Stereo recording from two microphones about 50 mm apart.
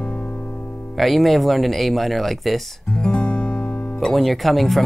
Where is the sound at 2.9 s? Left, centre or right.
Centre.